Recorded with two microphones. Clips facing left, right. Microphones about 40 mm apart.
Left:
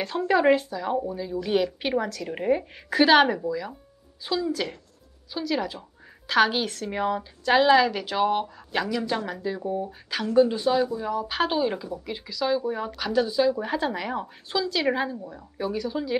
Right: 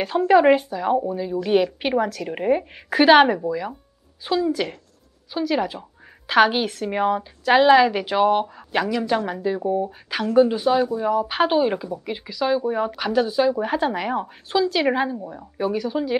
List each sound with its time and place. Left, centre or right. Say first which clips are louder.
0.3 s speech: right 5 dB; centre